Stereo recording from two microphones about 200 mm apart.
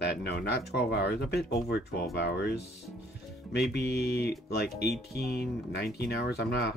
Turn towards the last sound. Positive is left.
turn(degrees=55)  # may be behind; listen again after turning